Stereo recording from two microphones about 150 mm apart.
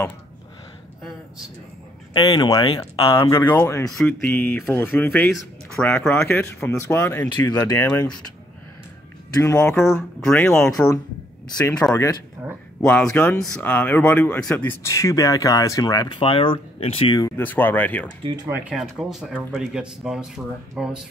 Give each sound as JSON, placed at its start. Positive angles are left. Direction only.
{"t": 2.1, "sound": "speech", "side_deg": 30}
{"t": 3.3, "sound": "speech", "side_deg": 15}
{"t": 9.3, "sound": "speech", "side_deg": 20}
{"t": 12.4, "sound": "a sound", "side_deg": -10}
{"t": 12.8, "sound": "speech", "side_deg": 5}
{"t": 17.4, "sound": "speech", "side_deg": 10}
{"t": 18.5, "sound": "speech", "side_deg": -5}